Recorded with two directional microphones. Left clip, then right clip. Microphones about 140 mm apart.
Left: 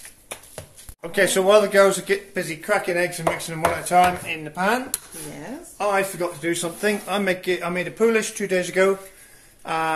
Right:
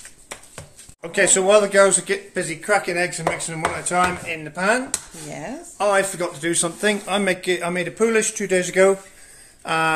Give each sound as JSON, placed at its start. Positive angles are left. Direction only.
{"t": 0.6, "sound": "speech", "side_deg": 0}
{"t": 5.8, "sound": "speech", "side_deg": -25}
{"t": 6.8, "sound": "a man's voice", "side_deg": -15}
{"t": 9.7, "sound": "speech", "side_deg": -35}